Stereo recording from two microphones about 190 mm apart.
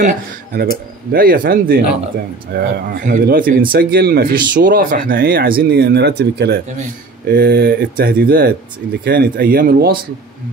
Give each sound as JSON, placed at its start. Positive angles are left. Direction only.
{"t": 0.5, "sound": "speech", "side_deg": -50}